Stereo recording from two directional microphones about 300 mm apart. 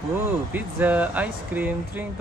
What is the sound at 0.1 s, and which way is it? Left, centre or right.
Speech, centre.